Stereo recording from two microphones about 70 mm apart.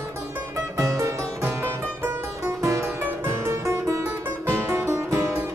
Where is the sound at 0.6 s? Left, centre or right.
Right.